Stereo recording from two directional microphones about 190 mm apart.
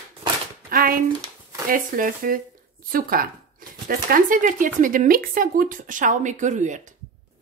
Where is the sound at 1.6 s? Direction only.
45° right (ahead or behind).